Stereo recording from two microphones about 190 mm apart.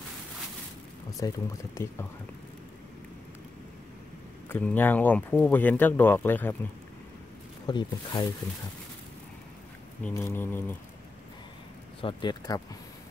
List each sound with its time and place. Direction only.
1.2 s speech: 20° left (ahead or behind)
4.5 s speech: 10° left (ahead or behind)
7.6 s speech: 25° left (ahead or behind)
10.0 s speech: 10° left (ahead or behind)
12.0 s speech: 25° left (ahead or behind)